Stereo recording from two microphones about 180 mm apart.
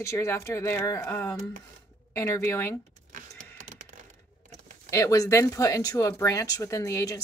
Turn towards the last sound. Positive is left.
turn(degrees=20)  # may be behind; listen again after turning